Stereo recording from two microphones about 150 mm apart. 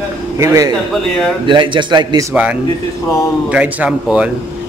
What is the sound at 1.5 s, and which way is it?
Speech, 30° right (ahead or behind).